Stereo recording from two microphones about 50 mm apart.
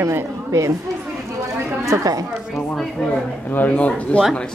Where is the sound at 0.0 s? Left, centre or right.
Right.